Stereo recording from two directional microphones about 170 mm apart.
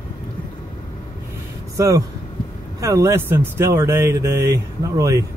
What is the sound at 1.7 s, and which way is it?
Speech, 20° right (ahead or behind).